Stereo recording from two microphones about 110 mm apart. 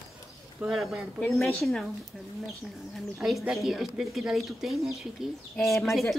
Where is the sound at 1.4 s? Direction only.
5° left (ahead or behind).